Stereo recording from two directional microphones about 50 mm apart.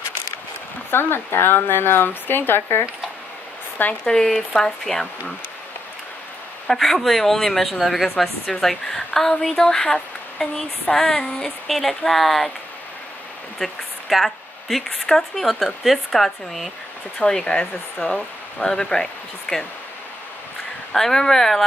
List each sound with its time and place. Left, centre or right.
0.9 s speech: left
4.0 s female singing: centre
6.7 s speech: centre
9.4 s female singing: centre
11.6 s speech: centre
13.6 s speech: centre
17.3 s female singing: centre
20.9 s female singing: centre